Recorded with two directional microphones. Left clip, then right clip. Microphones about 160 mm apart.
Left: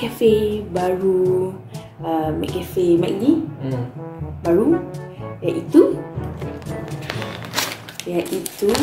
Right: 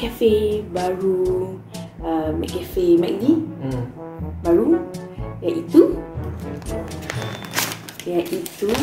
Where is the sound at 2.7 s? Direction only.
15° left (ahead or behind).